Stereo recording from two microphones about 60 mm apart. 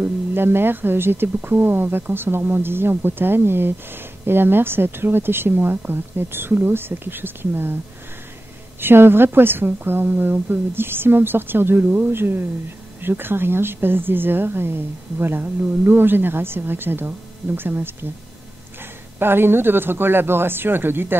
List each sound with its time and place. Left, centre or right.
0.0 s speech: right
8.8 s speech: right